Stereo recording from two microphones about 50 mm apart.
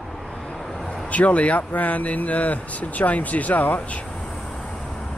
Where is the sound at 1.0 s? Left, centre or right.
Left.